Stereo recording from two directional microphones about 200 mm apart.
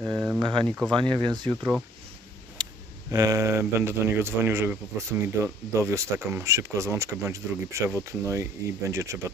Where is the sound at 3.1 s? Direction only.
15° right (ahead or behind).